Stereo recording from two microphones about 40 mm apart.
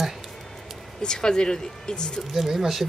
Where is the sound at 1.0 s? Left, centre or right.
Centre.